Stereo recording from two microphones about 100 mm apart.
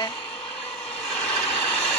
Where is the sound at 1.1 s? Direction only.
10° left (ahead or behind).